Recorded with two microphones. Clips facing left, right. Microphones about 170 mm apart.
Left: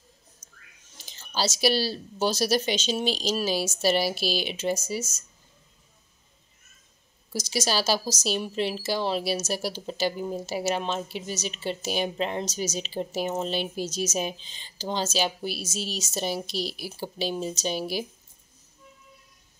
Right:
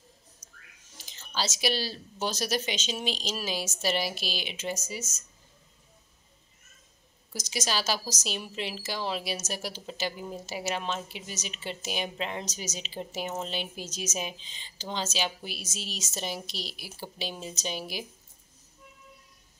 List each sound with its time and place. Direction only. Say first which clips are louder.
1.3 s a woman's voice: left 5 dB; 35° left (ahead or behind)
7.3 s a woman's voice: left 5 dB; 30° left (ahead or behind)